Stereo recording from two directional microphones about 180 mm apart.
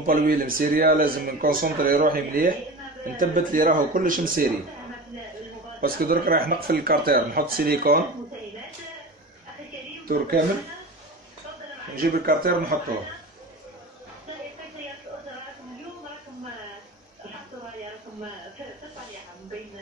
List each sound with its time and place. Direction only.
0.0 s a man's voice: 50° right (ahead or behind)
5.8 s speech: 55° right (ahead or behind)
10.0 s speech: 55° right (ahead or behind)
12.0 s a man's voice: 55° right (ahead or behind)